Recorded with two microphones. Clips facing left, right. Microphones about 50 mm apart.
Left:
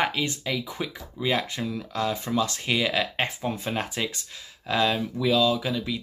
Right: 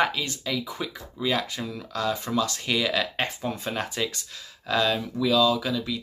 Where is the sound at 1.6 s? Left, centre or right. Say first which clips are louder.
Left 3 dB; centre.